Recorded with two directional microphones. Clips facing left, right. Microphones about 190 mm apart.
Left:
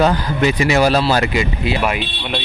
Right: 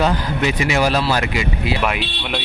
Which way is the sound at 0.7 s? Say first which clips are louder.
Left 3 dB; 35° left (ahead or behind).